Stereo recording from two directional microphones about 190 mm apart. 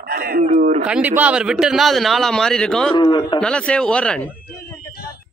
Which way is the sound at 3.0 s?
25° left (ahead or behind).